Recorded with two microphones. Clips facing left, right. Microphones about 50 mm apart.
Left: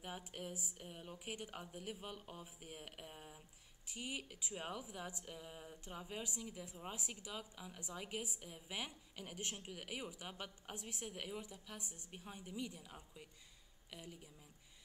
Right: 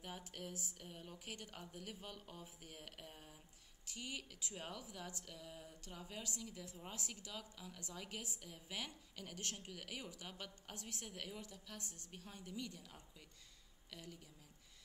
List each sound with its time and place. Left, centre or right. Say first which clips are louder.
0.0 s a woman's voice: left 2 dB; centre